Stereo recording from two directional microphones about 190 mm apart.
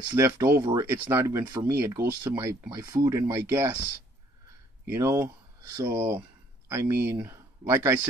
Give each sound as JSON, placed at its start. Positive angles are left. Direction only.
{"t": 0.1, "sound": "speech", "side_deg": -15}